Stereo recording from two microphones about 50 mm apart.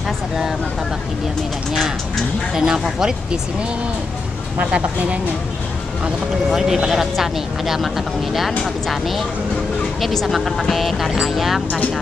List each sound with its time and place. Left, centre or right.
2.5 s speech: centre
4.6 s speech: right
6.5 s speech: centre
10.2 s speech: centre